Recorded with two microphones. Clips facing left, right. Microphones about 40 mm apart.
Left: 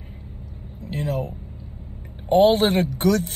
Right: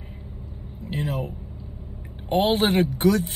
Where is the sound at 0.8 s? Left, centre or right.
Right.